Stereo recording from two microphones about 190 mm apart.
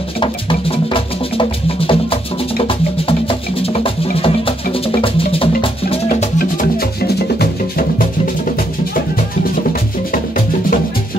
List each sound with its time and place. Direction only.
0.2 s music: 25° left (ahead or behind)
6.6 s music: 55° left (ahead or behind)